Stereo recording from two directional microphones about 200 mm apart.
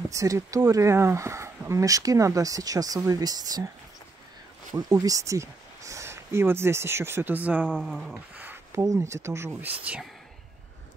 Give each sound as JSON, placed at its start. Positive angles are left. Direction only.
{"t": 0.1, "sound": "speech", "side_deg": -15}
{"t": 4.7, "sound": "speech", "side_deg": -20}